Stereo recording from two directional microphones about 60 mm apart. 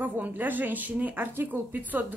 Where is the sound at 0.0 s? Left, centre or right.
Right.